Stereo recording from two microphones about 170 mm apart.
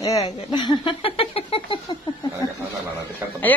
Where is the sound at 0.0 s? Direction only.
20° left (ahead or behind).